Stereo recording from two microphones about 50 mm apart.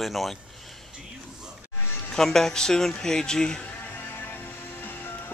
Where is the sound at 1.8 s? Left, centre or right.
Left.